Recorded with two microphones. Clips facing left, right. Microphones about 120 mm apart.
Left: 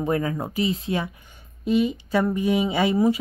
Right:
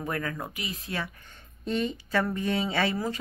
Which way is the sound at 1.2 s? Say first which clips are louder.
Left 8 dB; 10° left (ahead or behind).